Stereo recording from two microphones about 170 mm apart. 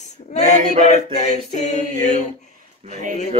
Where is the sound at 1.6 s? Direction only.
45° left (ahead or behind).